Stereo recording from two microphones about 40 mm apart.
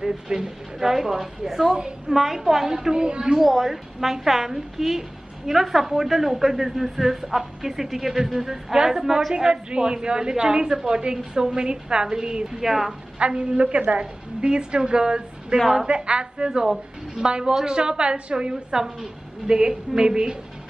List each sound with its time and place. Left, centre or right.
0.0 s a woman's voice: centre
3.3 s a woman's voice: centre
9.3 s a woman's voice: right
13.2 s a woman's voice: right
16.6 s a woman's voice: centre
17.2 s a woman's voice: right